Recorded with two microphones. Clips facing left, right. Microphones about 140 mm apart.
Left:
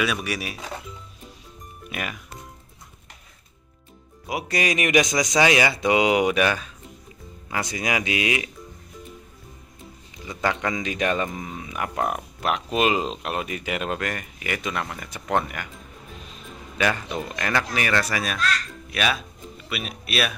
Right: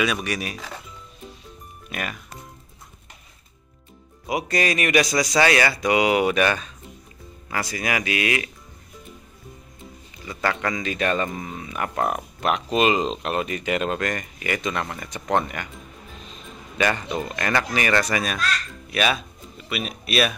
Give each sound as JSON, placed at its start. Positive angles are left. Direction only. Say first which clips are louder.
{"t": 0.0, "sound": "speech", "louder": "right 1 dB", "side_deg": 5}
{"t": 1.9, "sound": "speech", "louder": "right 1 dB", "side_deg": 10}
{"t": 4.3, "sound": "a man's voice", "louder": "right 2 dB", "side_deg": 5}
{"t": 7.4, "sound": "speech", "louder": "even", "side_deg": 20}
{"t": 10.2, "sound": "a man's voice", "louder": "even", "side_deg": 15}
{"t": 16.7, "sound": "speech", "louder": "right 1 dB", "side_deg": 0}